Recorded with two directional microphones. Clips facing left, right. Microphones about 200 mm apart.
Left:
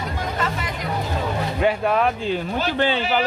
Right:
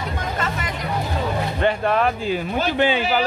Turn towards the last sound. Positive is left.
turn(degrees=-10)  # may be behind; listen again after turning